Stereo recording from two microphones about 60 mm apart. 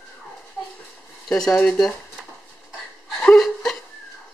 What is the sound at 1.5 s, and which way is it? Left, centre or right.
Speech, left.